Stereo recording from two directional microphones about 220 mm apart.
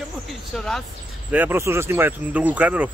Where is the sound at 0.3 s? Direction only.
Centre (ahead or behind).